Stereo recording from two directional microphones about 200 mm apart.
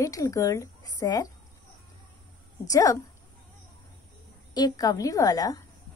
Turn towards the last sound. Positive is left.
turn(degrees=20)  # may be behind; listen again after turning